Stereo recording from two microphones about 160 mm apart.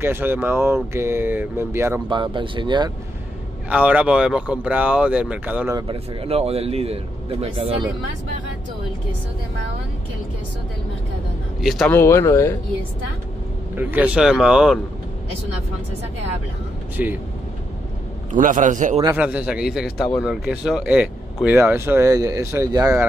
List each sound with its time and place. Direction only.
0.0 s speech: 15° right (ahead or behind)
2.0 s speech: 30° right (ahead or behind)
3.6 s speech: 10° right (ahead or behind)
5.8 s speech: 35° right (ahead or behind)
11.6 s speech: centre (ahead or behind)
11.9 s speech: 15° left (ahead or behind)
13.7 s speech: 10° right (ahead or behind)
16.9 s speech: 10° right (ahead or behind)
18.3 s a man's voice: 55° right (ahead or behind)
19.1 s speech: 10° right (ahead or behind)